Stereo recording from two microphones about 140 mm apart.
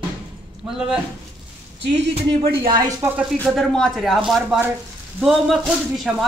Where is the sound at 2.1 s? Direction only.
35° right (ahead or behind).